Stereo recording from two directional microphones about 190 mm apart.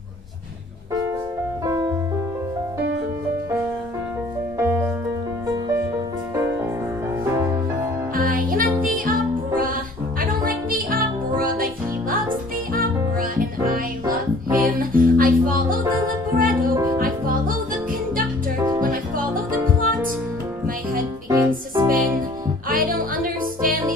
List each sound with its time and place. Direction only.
4.6 s music: 10° right (ahead or behind)
8.1 s music: 45° right (ahead or behind)
10.2 s music: 50° right (ahead or behind)
15.8 s music: 15° right (ahead or behind)
16.3 s music: 50° right (ahead or behind)
18.8 s music: 45° right (ahead or behind)
21.3 s music: 15° right (ahead or behind)
21.8 s music: 45° right (ahead or behind)